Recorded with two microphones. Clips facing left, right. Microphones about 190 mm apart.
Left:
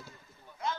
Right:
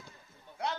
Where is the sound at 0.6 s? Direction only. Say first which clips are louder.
Even; 70° right (ahead or behind).